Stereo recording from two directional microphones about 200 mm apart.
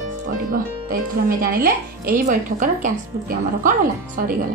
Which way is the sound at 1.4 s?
45° right (ahead or behind).